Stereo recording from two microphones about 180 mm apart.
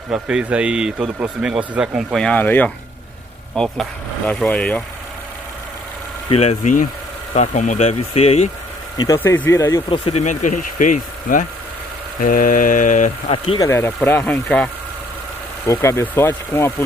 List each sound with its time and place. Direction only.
0.1 s a man's voice: 5° right (ahead or behind)
6.2 s speech: 35° left (ahead or behind)
8.9 s speech: 20° left (ahead or behind)
9.8 s speech: 30° left (ahead or behind)
10.2 s speech: 45° left (ahead or behind)
13.6 s speech: 15° left (ahead or behind)